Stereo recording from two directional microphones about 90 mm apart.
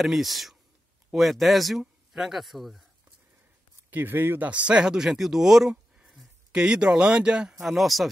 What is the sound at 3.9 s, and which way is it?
Speech, 20° right (ahead or behind).